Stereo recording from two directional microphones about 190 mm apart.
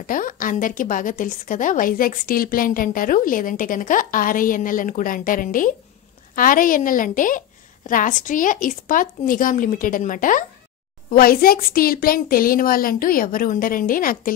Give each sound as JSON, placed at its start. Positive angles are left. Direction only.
{"t": 0.0, "sound": "a woman's voice", "side_deg": 45}